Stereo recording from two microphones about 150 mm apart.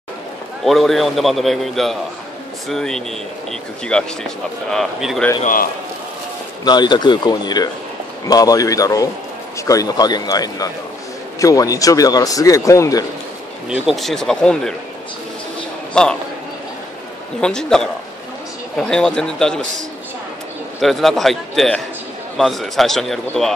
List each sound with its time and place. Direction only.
0.7 s a man's voice: centre (ahead or behind)
5.4 s a man's voice: 65° left (ahead or behind)
6.6 s speech: 30° left (ahead or behind)
13.8 s a man's voice: centre (ahead or behind)
15.9 s a man's voice: 5° left (ahead or behind)
17.4 s a man's voice: 5° left (ahead or behind)
20.8 s a man's voice: centre (ahead or behind)